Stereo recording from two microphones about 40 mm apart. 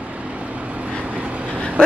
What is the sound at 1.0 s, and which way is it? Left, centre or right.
Vehicle, right.